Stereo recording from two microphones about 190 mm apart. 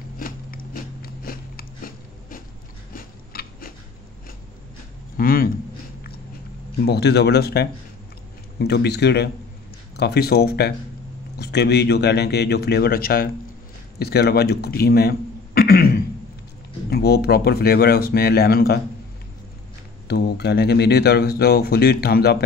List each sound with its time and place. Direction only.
0.2 s biting: 50° left (ahead or behind)
2.9 s biting: 50° left (ahead or behind)
5.1 s speech: 50° left (ahead or behind)
6.8 s speech: 60° left (ahead or behind)
20.1 s speech: 55° left (ahead or behind)